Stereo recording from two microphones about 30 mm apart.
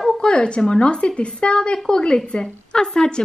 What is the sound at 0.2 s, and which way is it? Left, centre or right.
A woman's voice, left.